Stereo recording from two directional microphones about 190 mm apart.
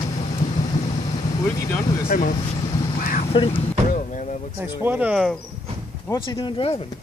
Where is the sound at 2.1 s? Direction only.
45° left (ahead or behind).